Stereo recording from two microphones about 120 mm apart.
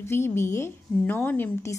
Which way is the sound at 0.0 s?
20° left (ahead or behind).